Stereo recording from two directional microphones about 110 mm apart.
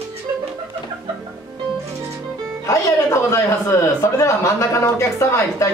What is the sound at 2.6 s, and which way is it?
Speech, 25° left (ahead or behind).